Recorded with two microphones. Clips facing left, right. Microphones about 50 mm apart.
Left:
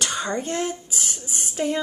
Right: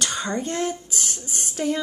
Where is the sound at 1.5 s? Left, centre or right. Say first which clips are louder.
Even; centre.